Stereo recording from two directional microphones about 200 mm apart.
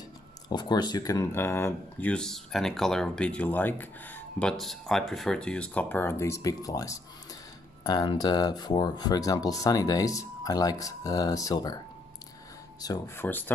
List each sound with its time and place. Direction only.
0.5 s speech: 20° left (ahead or behind)
12.8 s speech: 20° left (ahead or behind)